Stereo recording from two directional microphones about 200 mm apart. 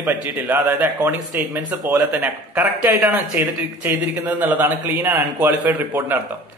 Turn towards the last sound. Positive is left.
turn(degrees=-10)  # may be behind; listen again after turning